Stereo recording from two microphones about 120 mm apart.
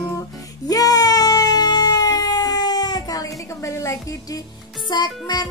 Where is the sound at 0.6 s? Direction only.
30° left (ahead or behind).